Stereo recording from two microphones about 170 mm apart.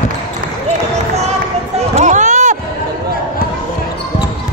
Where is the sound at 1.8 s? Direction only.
40° right (ahead or behind).